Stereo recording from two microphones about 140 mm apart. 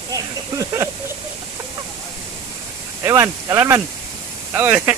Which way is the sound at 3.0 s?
20° right (ahead or behind).